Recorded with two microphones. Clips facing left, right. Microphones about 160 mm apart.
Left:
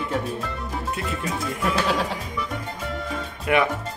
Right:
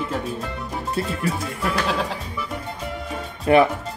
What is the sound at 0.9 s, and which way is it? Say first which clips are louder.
Speech: right 6 dB; 30° right (ahead or behind).